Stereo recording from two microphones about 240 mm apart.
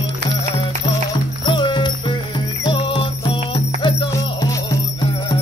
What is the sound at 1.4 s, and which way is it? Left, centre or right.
Music, centre.